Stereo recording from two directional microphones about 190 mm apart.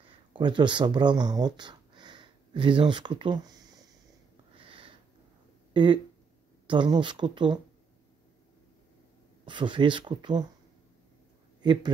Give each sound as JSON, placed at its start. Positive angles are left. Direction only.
{"t": 0.0, "sound": "speech", "side_deg": -25}
{"t": 4.6, "sound": "a sound", "side_deg": -25}
{"t": 5.7, "sound": "speech", "side_deg": -25}
{"t": 9.5, "sound": "speech", "side_deg": -25}
{"t": 11.6, "sound": "speech", "side_deg": -25}